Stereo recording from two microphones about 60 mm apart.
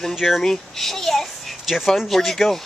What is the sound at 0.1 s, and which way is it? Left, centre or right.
A child's voice, centre.